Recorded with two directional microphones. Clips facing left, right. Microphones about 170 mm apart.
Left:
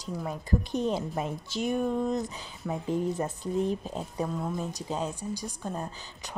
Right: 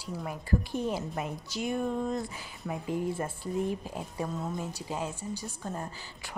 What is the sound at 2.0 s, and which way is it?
Speech, 20° left (ahead or behind).